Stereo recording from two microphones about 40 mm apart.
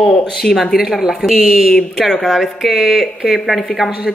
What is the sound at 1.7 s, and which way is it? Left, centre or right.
Speech, centre.